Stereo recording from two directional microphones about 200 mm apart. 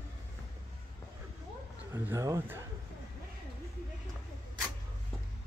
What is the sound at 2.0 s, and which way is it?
Speech, 15° right (ahead or behind).